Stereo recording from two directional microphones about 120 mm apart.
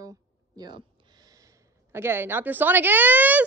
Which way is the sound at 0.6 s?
35° right (ahead or behind).